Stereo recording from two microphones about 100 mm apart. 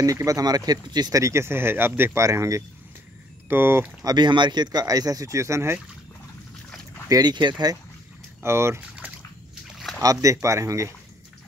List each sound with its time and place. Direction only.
0.0 s speech: 35° right (ahead or behind)
1.2 s speech: 25° right (ahead or behind)
4.0 s speech: 45° right (ahead or behind); by 5.8 s 25° right (ahead or behind)
7.1 s speech: 40° right (ahead or behind)
8.4 s speech: 25° right (ahead or behind)
10.0 s speech: 30° right (ahead or behind)